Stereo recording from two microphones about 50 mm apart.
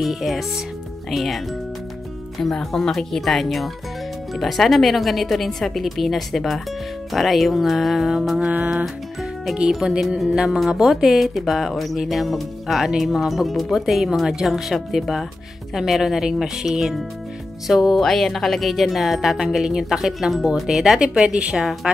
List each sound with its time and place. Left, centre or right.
0.0 s speech: centre
9.6 s speech: centre
10.3 s speech: centre
18.0 s speech: centre; by 21.6 s right